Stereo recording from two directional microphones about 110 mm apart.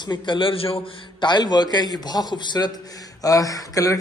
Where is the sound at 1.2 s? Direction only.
40° left (ahead or behind).